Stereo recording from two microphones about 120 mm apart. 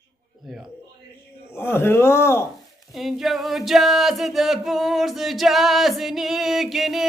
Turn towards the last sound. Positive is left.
turn(degrees=0)  # may be behind; listen again after turning